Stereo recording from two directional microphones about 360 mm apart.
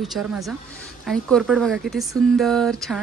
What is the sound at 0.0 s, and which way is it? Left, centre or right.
A woman's voice, centre.